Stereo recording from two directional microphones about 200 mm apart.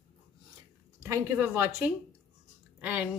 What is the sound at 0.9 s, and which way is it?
Speech, 15° right (ahead or behind).